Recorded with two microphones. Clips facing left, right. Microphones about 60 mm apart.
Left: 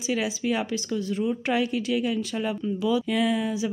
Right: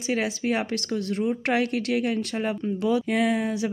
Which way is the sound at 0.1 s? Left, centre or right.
Right.